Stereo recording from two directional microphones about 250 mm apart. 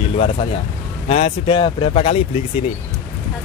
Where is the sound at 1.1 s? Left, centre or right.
Left.